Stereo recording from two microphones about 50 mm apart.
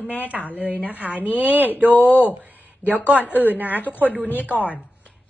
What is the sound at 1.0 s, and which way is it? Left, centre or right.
Speech, right.